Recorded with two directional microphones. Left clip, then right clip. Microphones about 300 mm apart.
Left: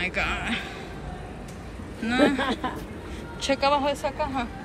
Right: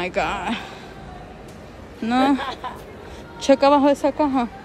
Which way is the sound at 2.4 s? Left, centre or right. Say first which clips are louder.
Left 1 dB; left.